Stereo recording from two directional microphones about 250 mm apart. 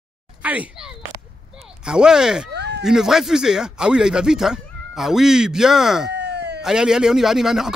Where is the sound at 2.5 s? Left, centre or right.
Right.